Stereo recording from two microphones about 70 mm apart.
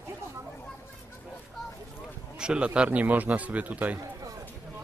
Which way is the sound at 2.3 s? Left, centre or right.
Centre.